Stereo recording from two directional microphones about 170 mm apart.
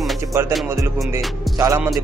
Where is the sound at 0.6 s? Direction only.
15° right (ahead or behind).